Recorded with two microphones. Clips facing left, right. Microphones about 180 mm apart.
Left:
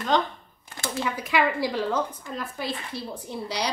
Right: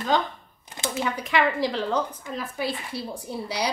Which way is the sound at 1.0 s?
5° left (ahead or behind).